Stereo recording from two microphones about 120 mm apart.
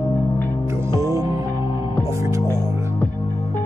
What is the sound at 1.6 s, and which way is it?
Music, 40° left (ahead or behind).